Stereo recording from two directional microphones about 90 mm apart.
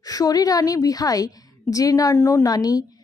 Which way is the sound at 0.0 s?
45° left (ahead or behind).